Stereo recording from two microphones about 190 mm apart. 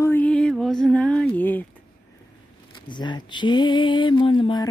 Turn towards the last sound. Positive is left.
turn(degrees=25)  # may be behind; listen again after turning